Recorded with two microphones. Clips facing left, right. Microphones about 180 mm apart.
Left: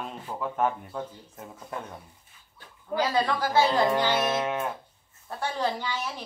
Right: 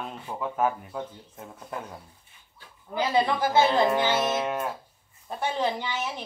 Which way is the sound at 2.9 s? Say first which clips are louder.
Right 1 dB; 20° right (ahead or behind).